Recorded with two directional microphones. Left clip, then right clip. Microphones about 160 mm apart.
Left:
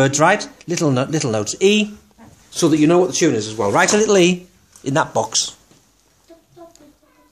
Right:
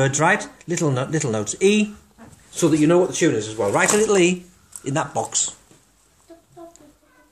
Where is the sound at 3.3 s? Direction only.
45° left (ahead or behind).